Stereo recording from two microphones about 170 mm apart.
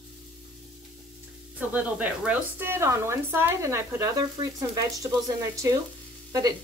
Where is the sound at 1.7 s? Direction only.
10° right (ahead or behind).